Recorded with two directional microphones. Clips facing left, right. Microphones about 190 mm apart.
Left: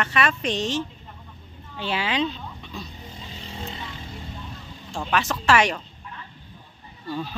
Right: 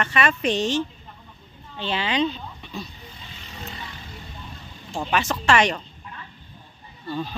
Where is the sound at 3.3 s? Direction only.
30° left (ahead or behind).